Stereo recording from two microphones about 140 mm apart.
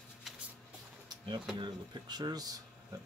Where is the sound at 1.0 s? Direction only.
30° right (ahead or behind).